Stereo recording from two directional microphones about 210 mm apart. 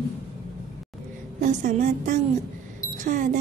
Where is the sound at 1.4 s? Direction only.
40° right (ahead or behind).